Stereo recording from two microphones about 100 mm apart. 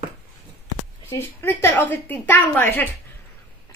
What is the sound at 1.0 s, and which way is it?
A woman's voice, 20° left (ahead or behind).